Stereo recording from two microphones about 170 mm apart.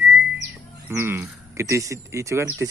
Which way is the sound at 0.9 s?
15° right (ahead or behind).